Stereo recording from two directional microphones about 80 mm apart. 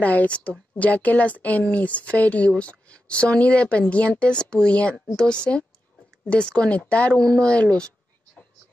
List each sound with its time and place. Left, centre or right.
0.0 s speech: centre